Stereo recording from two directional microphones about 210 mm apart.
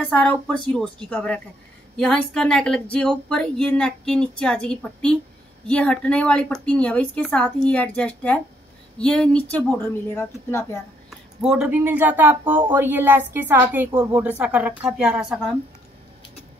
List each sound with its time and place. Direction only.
0.0 s speech: 5° left (ahead or behind)
11.1 s speech: centre (ahead or behind)